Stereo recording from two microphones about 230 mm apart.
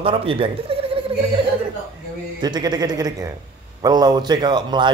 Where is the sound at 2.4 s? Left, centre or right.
Centre.